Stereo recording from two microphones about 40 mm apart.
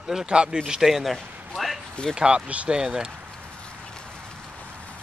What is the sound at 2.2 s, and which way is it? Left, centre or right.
Speech, centre.